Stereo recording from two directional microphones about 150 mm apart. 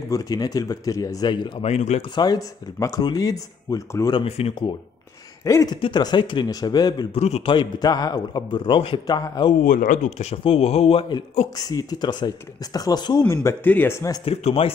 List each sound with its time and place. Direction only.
0.1 s speech: 25° left (ahead or behind)
1.6 s a man's voice: 45° left (ahead or behind)
2.1 s speech: 25° left (ahead or behind)
4.2 s speech: 40° left (ahead or behind)
5.4 s speech: 20° left (ahead or behind)
7.2 s a man's voice: 45° left (ahead or behind)
7.5 s speech: 25° left (ahead or behind)
9.7 s a man's voice: 60° left (ahead or behind); by 14.1 s 15° left (ahead or behind)
14.2 s speech: 40° left (ahead or behind)